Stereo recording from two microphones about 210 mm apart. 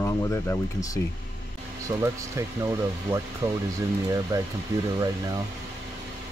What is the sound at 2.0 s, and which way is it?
Speech, 15° right (ahead or behind).